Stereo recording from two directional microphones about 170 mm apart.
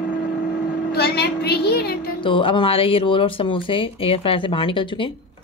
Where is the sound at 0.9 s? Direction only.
70° left (ahead or behind).